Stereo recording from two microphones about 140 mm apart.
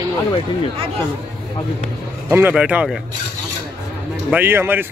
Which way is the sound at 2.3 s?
10° right (ahead or behind).